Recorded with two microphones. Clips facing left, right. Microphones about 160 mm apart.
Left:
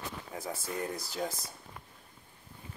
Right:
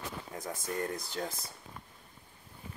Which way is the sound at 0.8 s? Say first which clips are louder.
Left 2 dB; 5° left (ahead or behind).